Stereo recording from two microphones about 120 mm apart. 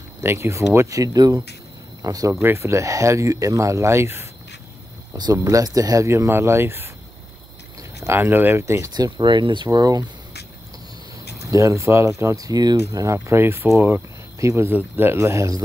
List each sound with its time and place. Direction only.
0.2 s speech: 20° right (ahead or behind)
8.0 s speech: 20° right (ahead or behind)
11.5 s speech: 25° right (ahead or behind)